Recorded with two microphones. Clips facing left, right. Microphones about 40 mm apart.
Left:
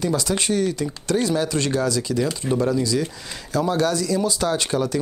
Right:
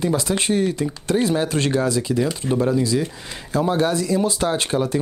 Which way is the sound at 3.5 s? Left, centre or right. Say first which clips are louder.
Right 1 dB; right.